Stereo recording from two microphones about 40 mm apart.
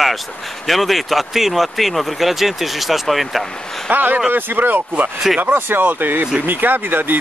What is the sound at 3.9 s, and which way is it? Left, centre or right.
Speech, right.